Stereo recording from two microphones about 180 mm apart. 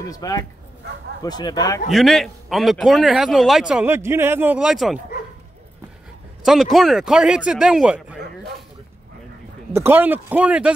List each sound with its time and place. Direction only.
0.1 s speech: 20° left (ahead or behind)
1.9 s a man's voice: centre (ahead or behind)
6.4 s a man's voice: centre (ahead or behind)
9.8 s speech: 10° right (ahead or behind)